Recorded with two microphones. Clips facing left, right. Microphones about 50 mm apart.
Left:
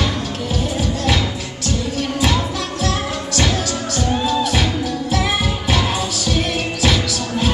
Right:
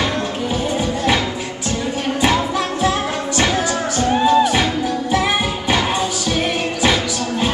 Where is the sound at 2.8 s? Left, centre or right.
Right.